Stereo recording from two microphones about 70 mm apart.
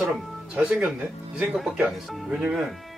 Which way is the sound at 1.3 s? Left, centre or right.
Centre.